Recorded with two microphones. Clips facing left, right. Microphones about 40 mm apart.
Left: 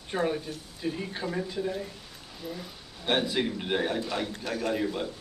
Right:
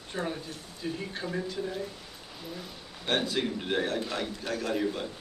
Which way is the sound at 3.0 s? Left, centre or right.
Centre.